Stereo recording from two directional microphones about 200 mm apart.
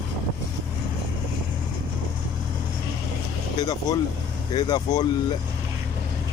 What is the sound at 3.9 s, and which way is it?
Speech, 20° left (ahead or behind).